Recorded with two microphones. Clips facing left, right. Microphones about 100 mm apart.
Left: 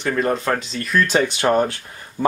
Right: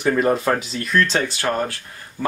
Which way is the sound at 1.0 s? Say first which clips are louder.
Left 4 dB; 15° left (ahead or behind).